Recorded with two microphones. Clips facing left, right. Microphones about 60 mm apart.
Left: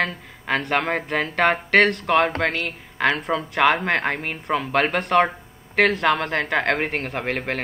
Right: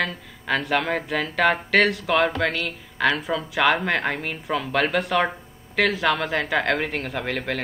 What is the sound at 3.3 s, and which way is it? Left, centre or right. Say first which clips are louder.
Speech: left 2 dB; left.